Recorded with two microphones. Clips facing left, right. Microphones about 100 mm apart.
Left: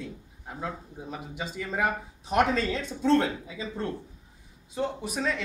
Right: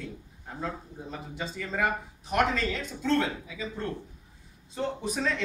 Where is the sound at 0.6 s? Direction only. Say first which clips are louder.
Even; 10° left (ahead or behind); by 3.6 s 25° left (ahead or behind).